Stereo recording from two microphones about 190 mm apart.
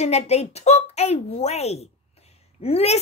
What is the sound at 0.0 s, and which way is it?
Speech, 35° left (ahead or behind).